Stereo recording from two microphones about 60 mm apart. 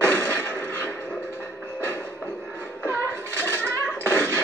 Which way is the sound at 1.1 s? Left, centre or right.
Left.